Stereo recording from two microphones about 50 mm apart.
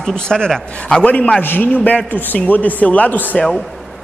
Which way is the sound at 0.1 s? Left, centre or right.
Centre.